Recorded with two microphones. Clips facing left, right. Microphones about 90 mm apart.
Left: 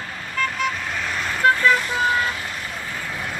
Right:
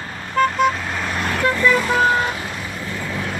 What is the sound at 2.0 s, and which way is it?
Vehicle, 35° right (ahead or behind).